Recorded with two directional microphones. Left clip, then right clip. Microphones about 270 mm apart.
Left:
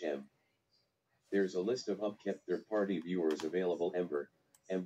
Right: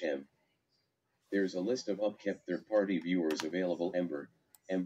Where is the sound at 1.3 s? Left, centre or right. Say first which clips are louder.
Even; right.